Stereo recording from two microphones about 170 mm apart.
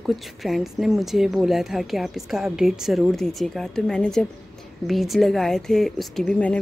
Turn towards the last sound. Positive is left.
turn(degrees=5)  # may be behind; listen again after turning